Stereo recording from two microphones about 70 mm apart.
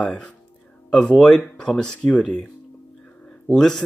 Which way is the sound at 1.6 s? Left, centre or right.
Centre.